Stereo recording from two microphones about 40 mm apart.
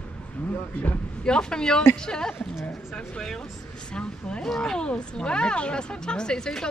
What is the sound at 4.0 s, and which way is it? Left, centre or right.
Speech, left.